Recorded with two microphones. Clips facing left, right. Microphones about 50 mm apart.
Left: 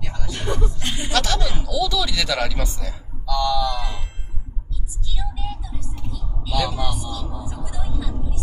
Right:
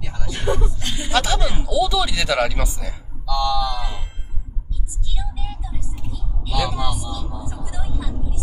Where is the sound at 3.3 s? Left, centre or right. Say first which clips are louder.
Even; centre.